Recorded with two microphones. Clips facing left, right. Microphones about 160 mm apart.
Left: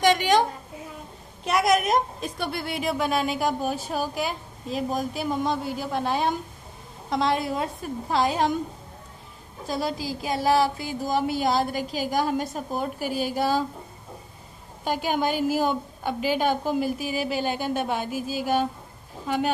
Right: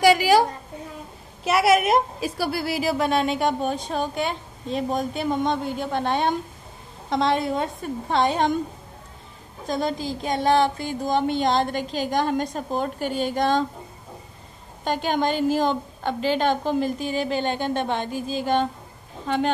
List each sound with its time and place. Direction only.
0.0 s a sound: 5° right (ahead or behind)
1.4 s a woman's voice: 5° right (ahead or behind)
9.7 s a woman's voice: 5° left (ahead or behind)
14.9 s a woman's voice: 10° left (ahead or behind)